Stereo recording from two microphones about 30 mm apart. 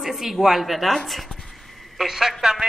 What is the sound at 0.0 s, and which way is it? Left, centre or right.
Speech, centre.